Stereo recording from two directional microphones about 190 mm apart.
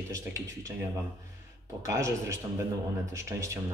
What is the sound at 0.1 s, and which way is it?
Speech, 15° right (ahead or behind).